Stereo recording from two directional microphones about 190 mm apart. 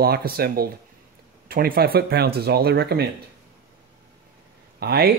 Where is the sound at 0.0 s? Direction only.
55° right (ahead or behind).